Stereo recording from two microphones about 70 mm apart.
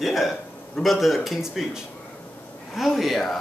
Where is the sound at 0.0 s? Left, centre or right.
Centre.